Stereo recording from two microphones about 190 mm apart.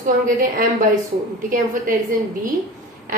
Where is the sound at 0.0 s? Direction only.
45° right (ahead or behind).